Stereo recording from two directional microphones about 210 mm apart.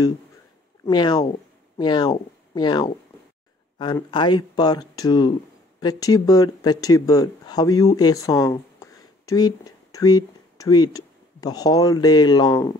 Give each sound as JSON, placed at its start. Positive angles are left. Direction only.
{"t": 0.8, "sound": "speech", "side_deg": 20}